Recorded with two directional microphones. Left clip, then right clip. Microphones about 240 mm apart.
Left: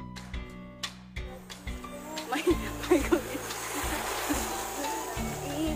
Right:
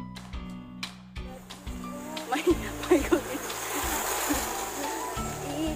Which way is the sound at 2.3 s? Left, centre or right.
Centre.